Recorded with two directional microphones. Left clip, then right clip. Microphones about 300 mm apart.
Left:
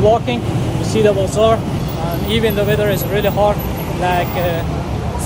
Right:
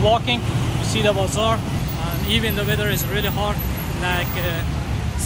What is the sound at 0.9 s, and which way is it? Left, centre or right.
Speech, centre.